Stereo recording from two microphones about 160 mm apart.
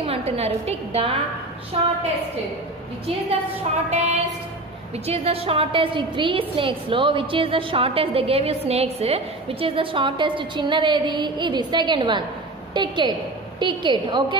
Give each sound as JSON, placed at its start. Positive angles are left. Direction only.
{"t": 0.0, "sound": "a woman's voice", "side_deg": -40}
{"t": 3.9, "sound": "music", "side_deg": -45}
{"t": 4.9, "sound": "a woman's voice", "side_deg": -40}